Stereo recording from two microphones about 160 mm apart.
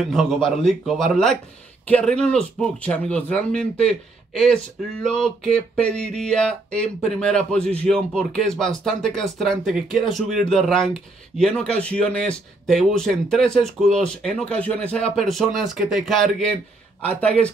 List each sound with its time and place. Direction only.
0.0 s speech: centre (ahead or behind)